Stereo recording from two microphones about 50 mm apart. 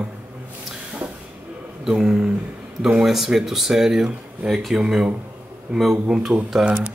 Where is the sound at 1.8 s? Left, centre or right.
Centre.